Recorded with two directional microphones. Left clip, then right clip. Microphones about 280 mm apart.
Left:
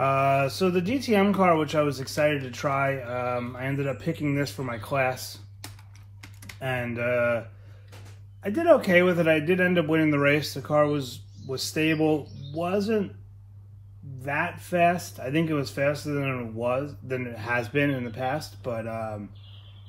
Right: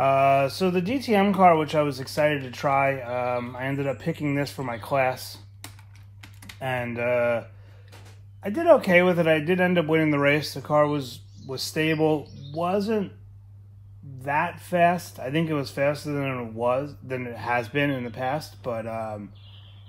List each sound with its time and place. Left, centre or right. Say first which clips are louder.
0.0 s speech: right 3 dB; right
6.6 s speech: right 2 dB; right
14.2 s speech: right 3 dB; right